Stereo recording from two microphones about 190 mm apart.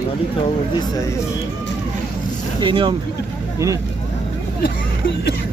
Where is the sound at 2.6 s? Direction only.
25° right (ahead or behind).